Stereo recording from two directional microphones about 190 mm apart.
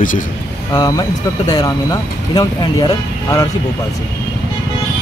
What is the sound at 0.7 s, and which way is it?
Speech, 20° left (ahead or behind).